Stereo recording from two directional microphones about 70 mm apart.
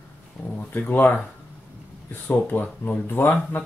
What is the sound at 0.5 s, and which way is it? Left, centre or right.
Speech, left.